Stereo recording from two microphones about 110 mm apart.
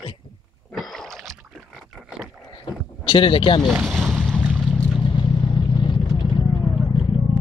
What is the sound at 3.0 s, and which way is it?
Speech, 50° left (ahead or behind).